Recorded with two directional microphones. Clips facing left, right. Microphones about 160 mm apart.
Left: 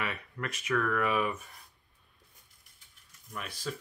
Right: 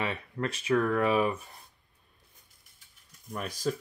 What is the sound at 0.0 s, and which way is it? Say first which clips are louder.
Speech: right 5 dB; 30° right (ahead or behind).